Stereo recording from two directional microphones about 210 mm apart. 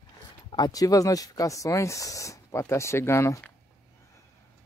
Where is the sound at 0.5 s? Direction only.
20° left (ahead or behind).